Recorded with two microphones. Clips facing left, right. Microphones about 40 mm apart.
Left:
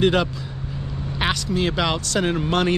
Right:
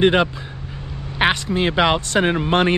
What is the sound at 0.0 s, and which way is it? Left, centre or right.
Speech, right.